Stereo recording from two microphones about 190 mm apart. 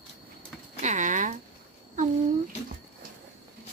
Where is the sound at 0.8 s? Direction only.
40° right (ahead or behind).